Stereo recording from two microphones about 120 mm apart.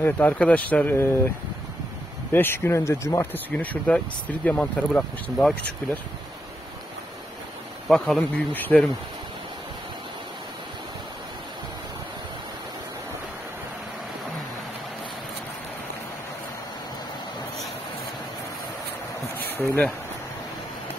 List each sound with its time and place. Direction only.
0.0 s speech: 15° left (ahead or behind)
2.3 s speech: 20° left (ahead or behind)
7.9 s speech: 5° left (ahead or behind)
19.3 s a sound: 15° left (ahead or behind)